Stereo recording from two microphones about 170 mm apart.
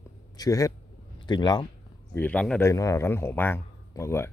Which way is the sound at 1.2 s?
25° left (ahead or behind).